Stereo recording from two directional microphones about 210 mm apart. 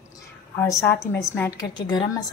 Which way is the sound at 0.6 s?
10° left (ahead or behind).